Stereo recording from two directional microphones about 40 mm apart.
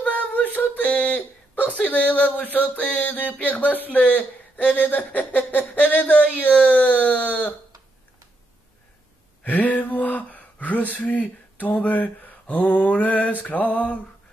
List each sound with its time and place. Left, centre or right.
0.0 s a sound: left
1.9 s music: left
3.0 s speech: left
6.7 s music: left
9.4 s speech: left